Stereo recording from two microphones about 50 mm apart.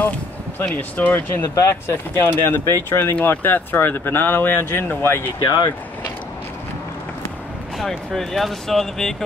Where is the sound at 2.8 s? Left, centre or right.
Left.